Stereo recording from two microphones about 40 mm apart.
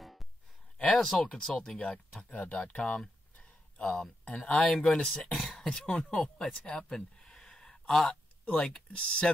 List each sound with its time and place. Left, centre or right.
0.0 s a sound: centre
0.9 s speech: centre
1.3 s speech: centre
3.3 s a sound: left
4.2 s speech: left; by 5.3 s centre
5.3 s throat clearing: centre
5.7 s speech: left
6.8 s a sound: centre
7.9 s speech: centre
8.5 s speech: centre
8.9 s speech: left